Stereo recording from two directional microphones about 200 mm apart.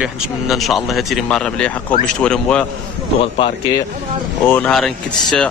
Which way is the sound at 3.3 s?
25° left (ahead or behind).